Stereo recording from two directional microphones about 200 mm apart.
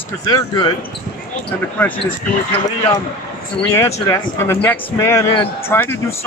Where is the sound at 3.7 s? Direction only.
15° left (ahead or behind).